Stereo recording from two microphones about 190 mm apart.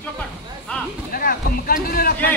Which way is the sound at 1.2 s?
50° left (ahead or behind).